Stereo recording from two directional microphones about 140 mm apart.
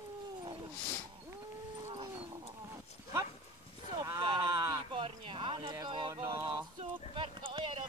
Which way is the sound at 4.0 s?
25° right (ahead or behind).